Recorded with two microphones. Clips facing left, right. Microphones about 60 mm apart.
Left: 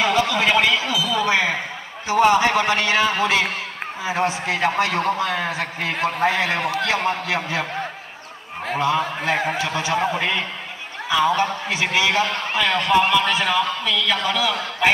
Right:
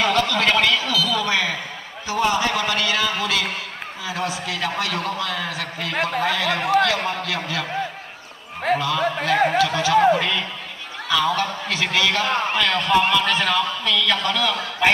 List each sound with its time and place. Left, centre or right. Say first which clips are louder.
0.0 s a sound: left 1 dB; centre
2.0 s a man's voice: left 5 dB; left
8.7 s speech: left 3 dB; left
11.1 s speech: left 2 dB; left
14.8 s honk: even; centre